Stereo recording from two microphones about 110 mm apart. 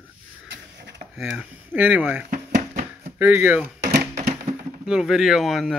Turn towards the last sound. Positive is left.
turn(degrees=0)  # may be behind; listen again after turning